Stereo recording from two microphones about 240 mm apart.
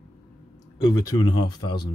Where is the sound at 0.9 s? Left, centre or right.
Centre.